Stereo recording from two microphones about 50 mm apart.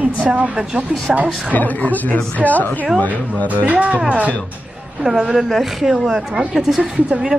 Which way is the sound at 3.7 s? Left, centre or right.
Right.